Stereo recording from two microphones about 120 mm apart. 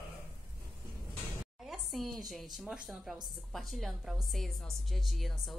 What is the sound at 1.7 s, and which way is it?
A woman's voice, centre (ahead or behind).